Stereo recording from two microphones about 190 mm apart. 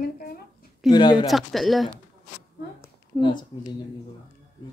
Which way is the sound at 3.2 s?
25° left (ahead or behind).